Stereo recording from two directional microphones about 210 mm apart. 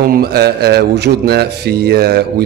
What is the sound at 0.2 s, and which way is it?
Speech, 50° right (ahead or behind).